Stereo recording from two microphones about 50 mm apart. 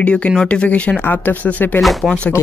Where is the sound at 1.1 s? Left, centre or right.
Left.